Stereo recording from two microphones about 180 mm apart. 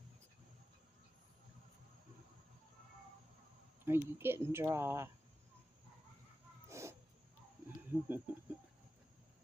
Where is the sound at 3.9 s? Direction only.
15° right (ahead or behind).